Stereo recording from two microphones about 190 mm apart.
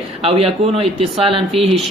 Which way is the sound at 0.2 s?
30° right (ahead or behind).